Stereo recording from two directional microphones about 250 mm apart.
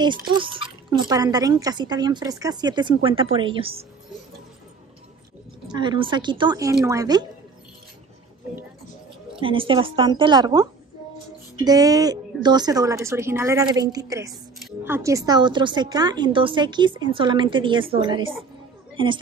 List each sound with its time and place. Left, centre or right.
0.0 s speech: centre
5.7 s speech: centre
9.3 s speech: right